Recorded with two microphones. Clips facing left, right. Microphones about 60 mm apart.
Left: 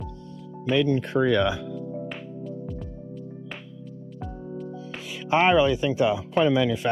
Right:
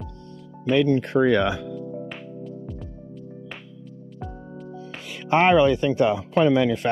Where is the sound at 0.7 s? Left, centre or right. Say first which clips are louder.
Right 3 dB; right.